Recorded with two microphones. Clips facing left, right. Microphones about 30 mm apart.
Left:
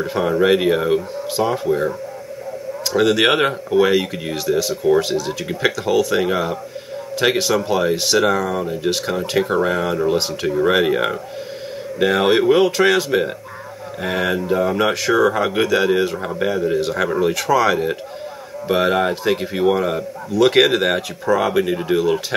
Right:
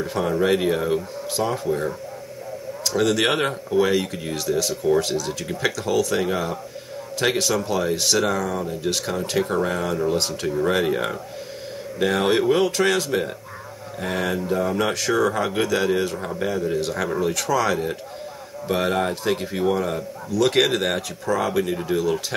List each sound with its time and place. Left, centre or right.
0.0 s a man's voice: centre